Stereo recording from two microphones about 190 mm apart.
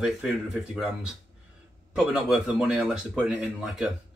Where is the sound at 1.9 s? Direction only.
5° right (ahead or behind).